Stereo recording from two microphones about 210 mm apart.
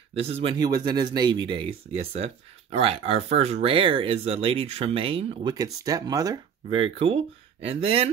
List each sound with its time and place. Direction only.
0.1 s speech: 30° right (ahead or behind)